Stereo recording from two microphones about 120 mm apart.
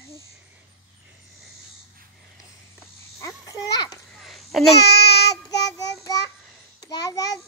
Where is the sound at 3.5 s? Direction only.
30° left (ahead or behind).